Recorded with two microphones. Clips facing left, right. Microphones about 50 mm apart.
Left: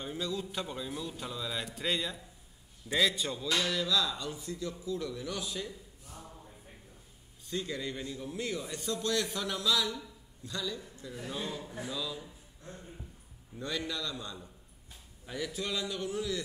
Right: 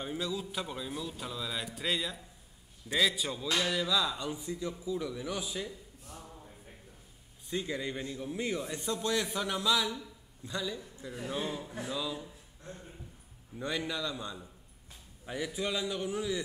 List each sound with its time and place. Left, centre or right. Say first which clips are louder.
0.0 s speech: right 1 dB; centre
7.4 s a man's voice: right 1 dB; centre
13.6 s a man's voice: right 2 dB; centre